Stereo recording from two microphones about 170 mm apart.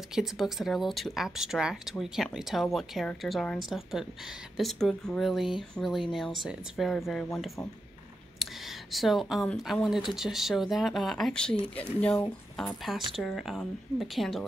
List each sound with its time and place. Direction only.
0.1 s speech: centre (ahead or behind)